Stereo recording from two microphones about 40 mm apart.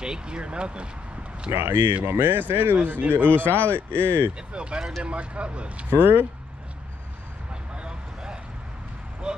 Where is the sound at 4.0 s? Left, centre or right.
Right.